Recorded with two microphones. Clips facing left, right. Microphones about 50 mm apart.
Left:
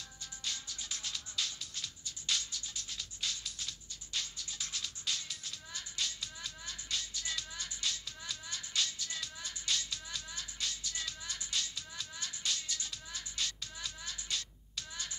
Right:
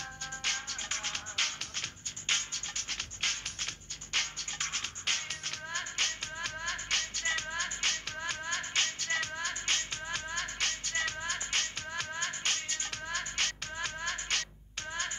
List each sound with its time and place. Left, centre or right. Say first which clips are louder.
0.4 s music: right 6 dB; right